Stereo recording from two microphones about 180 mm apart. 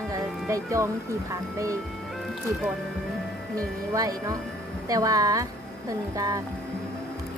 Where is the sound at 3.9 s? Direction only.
20° right (ahead or behind).